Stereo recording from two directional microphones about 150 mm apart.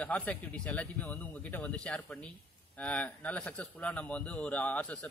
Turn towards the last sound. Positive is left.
turn(degrees=10)  # may be behind; listen again after turning